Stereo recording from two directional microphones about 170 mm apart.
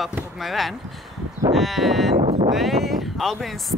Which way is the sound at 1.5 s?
Centre (ahead or behind).